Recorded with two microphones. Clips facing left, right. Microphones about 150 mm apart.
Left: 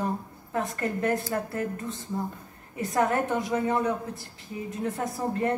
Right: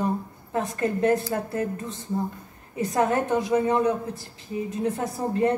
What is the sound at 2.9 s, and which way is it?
A woman's voice, 20° right (ahead or behind).